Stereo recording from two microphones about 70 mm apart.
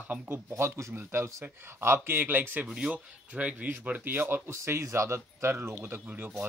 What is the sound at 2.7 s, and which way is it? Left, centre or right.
Speech, centre.